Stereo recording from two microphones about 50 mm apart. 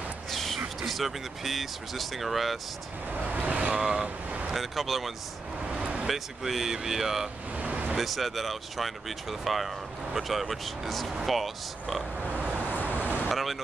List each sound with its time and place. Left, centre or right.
0.3 s a sound: centre
0.7 s speech: centre
3.1 s vehicle: right
3.7 s speech: centre
4.6 s speech: centre
5.7 s vehicle: right
6.0 s speech: centre
7.5 s vehicle: right
8.0 s speech: centre
12.4 s vehicle: right
13.3 s vehicle: centre